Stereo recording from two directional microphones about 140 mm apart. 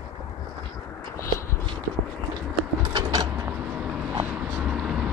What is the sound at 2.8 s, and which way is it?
Mechanisms, 30° right (ahead or behind).